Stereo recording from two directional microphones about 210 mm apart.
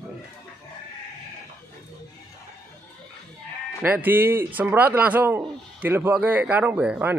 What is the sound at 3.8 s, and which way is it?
Speech, 10° right (ahead or behind).